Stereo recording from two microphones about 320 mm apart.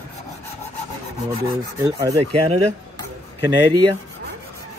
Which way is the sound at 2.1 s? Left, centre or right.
Centre.